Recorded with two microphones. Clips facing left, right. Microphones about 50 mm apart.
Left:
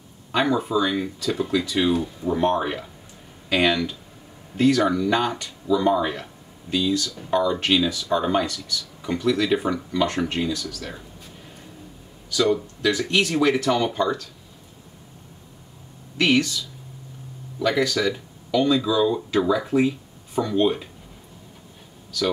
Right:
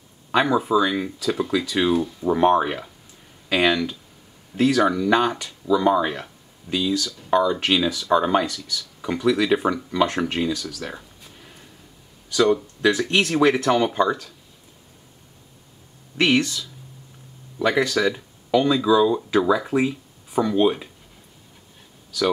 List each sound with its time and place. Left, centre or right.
0.3 s speech: centre
13.5 s speech: centre
16.2 s speech: right
17.6 s speech: centre